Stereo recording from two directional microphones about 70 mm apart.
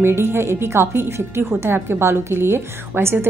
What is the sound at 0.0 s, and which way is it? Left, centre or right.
A woman's voice, right.